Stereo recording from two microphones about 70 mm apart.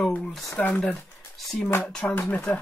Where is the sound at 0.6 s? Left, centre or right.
Left.